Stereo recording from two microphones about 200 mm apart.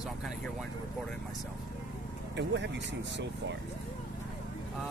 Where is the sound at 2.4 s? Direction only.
60° right (ahead or behind).